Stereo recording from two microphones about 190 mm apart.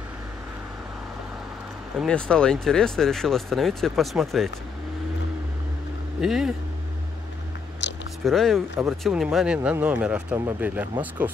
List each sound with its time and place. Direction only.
2.0 s speech: 5° left (ahead or behind)
6.2 s speech: centre (ahead or behind)
7.8 s biting: 70° left (ahead or behind)
8.2 s speech: centre (ahead or behind)